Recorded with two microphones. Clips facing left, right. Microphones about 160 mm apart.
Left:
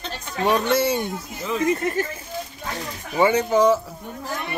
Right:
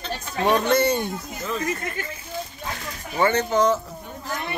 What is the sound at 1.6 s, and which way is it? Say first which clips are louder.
Speech: left 7 dB; 30° left (ahead or behind).